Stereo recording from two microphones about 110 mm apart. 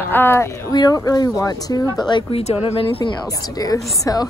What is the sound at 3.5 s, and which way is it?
Speech, 30° left (ahead or behind).